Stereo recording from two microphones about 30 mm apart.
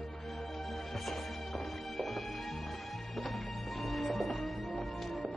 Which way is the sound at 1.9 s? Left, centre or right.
Centre.